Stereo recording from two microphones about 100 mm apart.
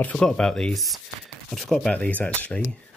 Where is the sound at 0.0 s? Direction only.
10° left (ahead or behind).